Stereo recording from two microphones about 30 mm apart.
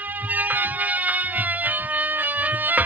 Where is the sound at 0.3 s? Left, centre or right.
Right.